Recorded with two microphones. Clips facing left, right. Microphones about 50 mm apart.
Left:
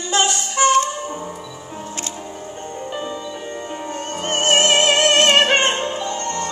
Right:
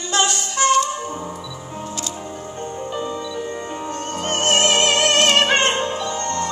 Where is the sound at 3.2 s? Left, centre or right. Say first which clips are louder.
Right 3 dB; left.